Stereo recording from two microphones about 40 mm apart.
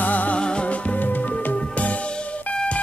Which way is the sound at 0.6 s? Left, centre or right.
Left.